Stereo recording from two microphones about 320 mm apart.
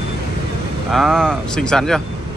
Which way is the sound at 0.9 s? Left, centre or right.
Centre.